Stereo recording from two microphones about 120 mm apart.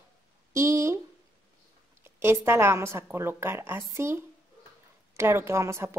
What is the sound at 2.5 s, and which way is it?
A woman's voice, 20° right (ahead or behind).